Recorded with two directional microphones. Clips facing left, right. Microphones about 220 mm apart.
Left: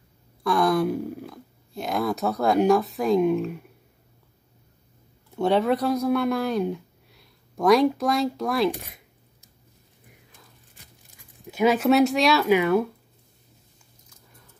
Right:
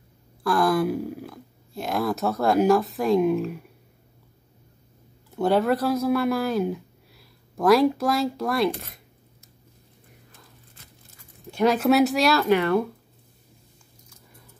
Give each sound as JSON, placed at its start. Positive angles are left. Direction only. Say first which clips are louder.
{"t": 0.4, "sound": "speech", "louder": "even", "side_deg": 0}
{"t": 5.3, "sound": "speech", "louder": "even", "side_deg": 0}
{"t": 10.7, "sound": "keys jangling", "louder": "right 2 dB", "side_deg": 15}
{"t": 11.6, "sound": "speech", "louder": "even", "side_deg": 0}